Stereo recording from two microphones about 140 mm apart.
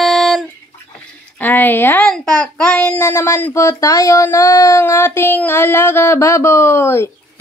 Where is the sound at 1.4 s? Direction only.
15° left (ahead or behind).